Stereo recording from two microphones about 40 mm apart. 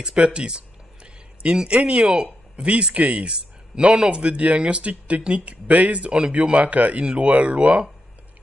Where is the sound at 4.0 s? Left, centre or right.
Right.